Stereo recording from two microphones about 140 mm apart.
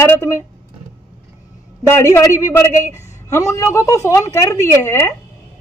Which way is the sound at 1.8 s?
20° left (ahead or behind).